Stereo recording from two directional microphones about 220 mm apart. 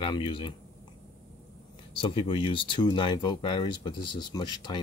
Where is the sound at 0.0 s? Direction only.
25° left (ahead or behind).